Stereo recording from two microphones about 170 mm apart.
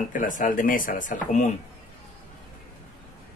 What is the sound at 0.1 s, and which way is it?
Speech, 50° left (ahead or behind).